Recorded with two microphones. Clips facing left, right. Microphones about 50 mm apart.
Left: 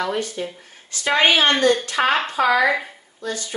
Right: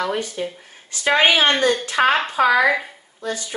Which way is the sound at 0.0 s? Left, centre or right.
Centre.